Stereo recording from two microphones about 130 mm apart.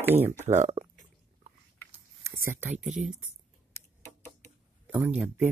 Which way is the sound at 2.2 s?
20° right (ahead or behind).